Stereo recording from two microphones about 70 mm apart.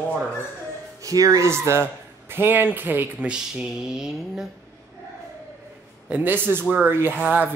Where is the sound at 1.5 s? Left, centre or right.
Right.